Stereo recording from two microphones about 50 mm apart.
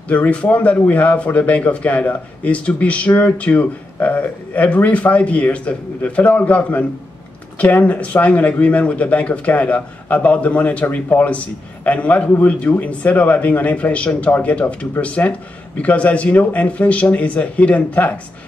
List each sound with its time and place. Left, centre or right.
0.1 s speech: left